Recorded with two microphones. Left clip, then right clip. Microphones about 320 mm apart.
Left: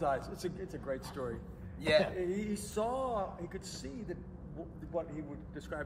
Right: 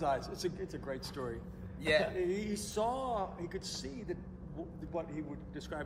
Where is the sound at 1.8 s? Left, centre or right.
Centre.